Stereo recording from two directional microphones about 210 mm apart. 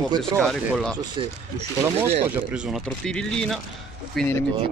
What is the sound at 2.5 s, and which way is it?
Speech, 5° right (ahead or behind).